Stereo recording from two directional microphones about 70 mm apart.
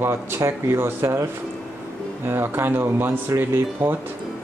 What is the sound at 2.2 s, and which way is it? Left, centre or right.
Speech, right.